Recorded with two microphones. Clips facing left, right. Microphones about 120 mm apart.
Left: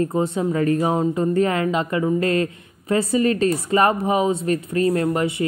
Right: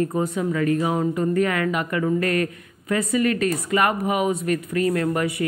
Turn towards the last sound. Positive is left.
turn(degrees=25)  # may be behind; listen again after turning